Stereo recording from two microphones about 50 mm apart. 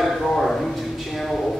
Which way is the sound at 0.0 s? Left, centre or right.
Centre.